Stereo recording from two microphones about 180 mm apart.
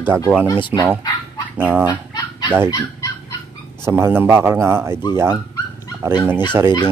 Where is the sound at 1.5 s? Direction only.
10° right (ahead or behind).